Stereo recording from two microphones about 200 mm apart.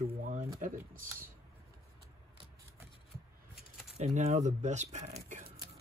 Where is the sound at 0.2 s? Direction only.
40° right (ahead or behind).